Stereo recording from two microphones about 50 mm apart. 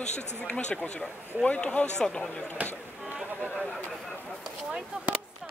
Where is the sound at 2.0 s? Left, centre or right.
Centre.